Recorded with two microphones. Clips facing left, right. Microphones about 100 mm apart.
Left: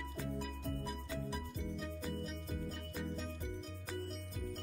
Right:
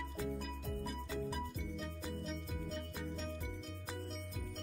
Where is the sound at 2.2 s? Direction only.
5° left (ahead or behind).